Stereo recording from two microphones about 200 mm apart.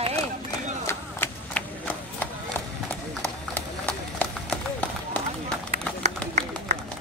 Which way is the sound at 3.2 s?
5° left (ahead or behind).